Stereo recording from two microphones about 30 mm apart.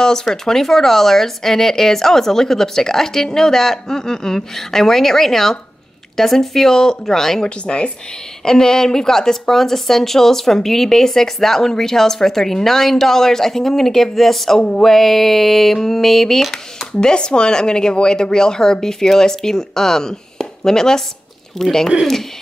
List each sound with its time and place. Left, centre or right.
0.0 s speech: left
7.4 s speech: left
8.5 s speech: left
17.0 s a woman's voice: left; by 21.8 s centre